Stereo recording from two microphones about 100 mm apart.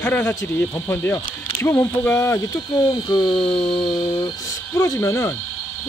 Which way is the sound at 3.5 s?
65° left (ahead or behind).